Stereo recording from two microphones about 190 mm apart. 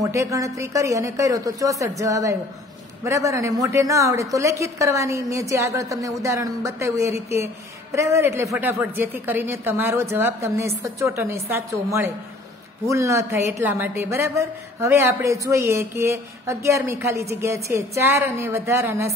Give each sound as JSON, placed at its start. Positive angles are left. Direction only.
{"t": 0.0, "sound": "a woman's voice", "side_deg": -15}